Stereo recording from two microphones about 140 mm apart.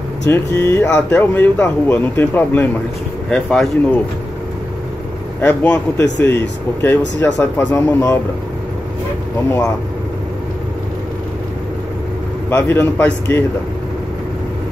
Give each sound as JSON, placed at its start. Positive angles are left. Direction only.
{"t": 0.3, "sound": "speech", "side_deg": 20}
{"t": 5.4, "sound": "speech", "side_deg": 10}
{"t": 12.4, "sound": "speech", "side_deg": 15}